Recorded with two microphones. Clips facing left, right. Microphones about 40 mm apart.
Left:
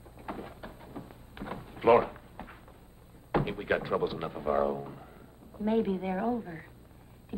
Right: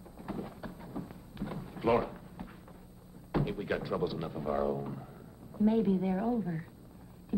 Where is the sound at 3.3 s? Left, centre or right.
Left.